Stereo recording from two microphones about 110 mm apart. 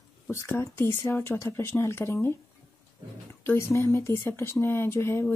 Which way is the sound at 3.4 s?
25° left (ahead or behind).